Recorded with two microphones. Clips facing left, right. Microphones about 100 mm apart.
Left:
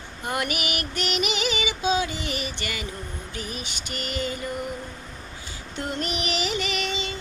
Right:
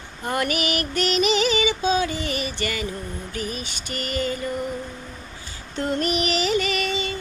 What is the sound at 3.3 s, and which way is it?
Mantra, 20° left (ahead or behind).